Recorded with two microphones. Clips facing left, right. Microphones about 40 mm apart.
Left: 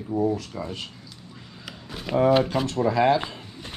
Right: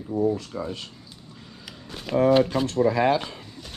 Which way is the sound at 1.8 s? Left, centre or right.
Centre.